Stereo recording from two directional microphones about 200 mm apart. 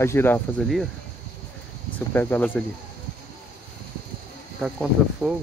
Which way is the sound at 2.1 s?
10° left (ahead or behind).